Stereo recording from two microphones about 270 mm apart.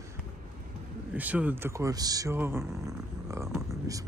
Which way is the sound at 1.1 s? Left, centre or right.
Centre.